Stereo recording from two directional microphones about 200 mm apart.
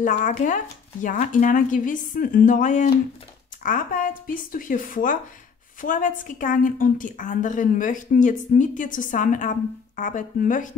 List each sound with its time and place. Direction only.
0.1 s a woman's voice: 40° left (ahead or behind)